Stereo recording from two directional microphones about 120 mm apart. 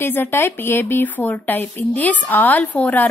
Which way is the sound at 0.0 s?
20° left (ahead or behind).